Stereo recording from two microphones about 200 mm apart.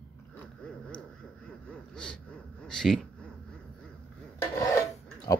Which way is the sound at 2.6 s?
5° left (ahead or behind).